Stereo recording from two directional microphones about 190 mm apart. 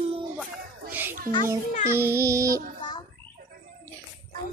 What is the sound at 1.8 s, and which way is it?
Music, 15° right (ahead or behind).